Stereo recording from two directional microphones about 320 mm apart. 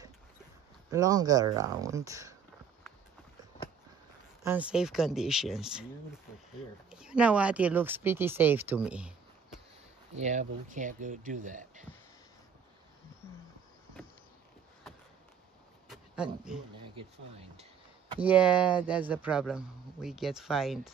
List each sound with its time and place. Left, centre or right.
0.8 s speech: centre
4.4 s speech: centre
6.9 s speech: centre
10.1 s speech: right
15.9 s a sound: centre
18.2 s speech: centre